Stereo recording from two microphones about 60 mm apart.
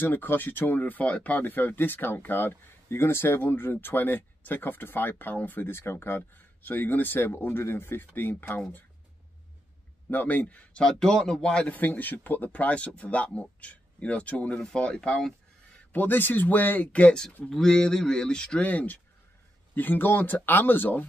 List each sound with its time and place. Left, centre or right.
0.0 s speech: left
10.0 s speech: left; by 11.6 s centre
11.6 s speech: left; by 15.3 s centre
15.9 s speech: left
17.5 s speech: centre
18.7 s speech: left